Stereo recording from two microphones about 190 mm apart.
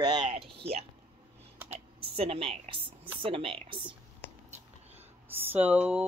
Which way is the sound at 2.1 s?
30° right (ahead or behind).